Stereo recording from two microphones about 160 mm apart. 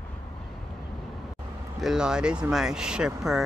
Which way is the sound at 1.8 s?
5° right (ahead or behind).